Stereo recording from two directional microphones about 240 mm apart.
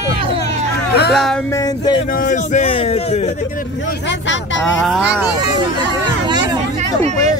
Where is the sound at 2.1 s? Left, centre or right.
Left.